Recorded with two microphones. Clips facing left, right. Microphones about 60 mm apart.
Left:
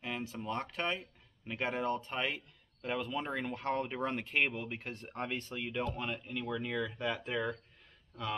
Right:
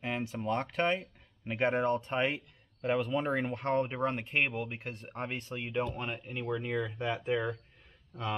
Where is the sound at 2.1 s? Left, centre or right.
Right.